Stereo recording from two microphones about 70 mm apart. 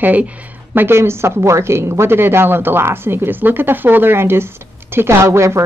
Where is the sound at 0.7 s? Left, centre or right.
Right.